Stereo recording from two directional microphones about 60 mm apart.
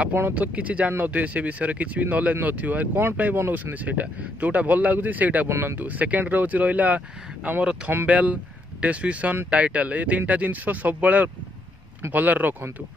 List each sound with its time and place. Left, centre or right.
0.1 s speech: right
3.3 s speech: right
5.5 s speech: right
5.8 s speech: right